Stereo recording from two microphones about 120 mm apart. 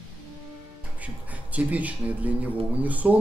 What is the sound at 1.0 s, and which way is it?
Speech, 10° right (ahead or behind).